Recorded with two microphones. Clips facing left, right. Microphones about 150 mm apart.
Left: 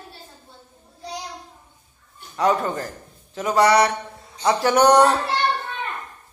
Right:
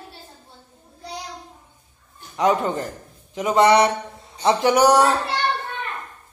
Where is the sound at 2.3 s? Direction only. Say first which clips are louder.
Right 1 dB; 20° right (ahead or behind).